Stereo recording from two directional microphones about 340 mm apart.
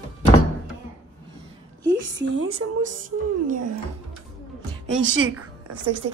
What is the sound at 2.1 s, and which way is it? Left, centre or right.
Speech, right.